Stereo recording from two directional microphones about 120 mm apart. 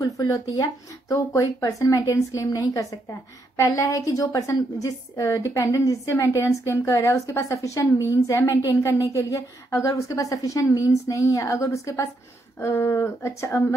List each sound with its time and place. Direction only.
0.0 s a woman's voice: 30° left (ahead or behind)